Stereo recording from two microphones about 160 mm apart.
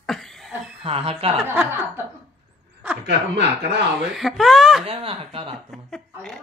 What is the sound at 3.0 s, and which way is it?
Speech, 90° right.